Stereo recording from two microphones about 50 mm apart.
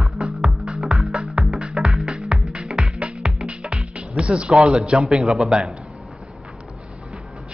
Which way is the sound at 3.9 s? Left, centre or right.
Right.